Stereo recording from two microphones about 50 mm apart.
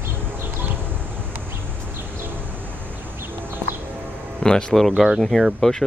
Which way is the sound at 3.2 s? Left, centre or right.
Right.